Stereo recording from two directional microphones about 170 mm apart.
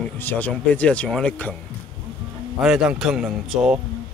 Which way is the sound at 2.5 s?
5° right (ahead or behind).